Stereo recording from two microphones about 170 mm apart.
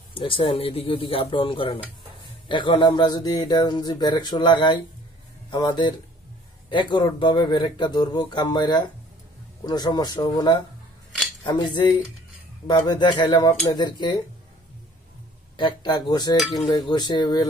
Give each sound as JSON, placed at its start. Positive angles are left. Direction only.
{"t": 0.1, "sound": "speech", "side_deg": 30}
{"t": 15.5, "sound": "speech", "side_deg": 25}